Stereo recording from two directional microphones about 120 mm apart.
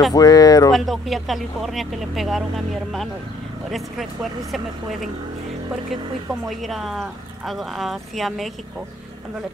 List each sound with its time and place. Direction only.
0.1 s speech: 30° left (ahead or behind)
0.7 s speech: centre (ahead or behind)
6.6 s speech: centre (ahead or behind)